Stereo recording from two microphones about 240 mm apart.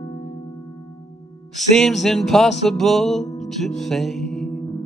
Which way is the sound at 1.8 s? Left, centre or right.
Centre.